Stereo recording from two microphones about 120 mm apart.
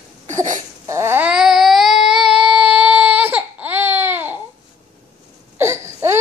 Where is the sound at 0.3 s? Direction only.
85° right.